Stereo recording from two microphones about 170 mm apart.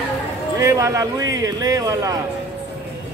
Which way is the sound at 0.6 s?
20° right (ahead or behind).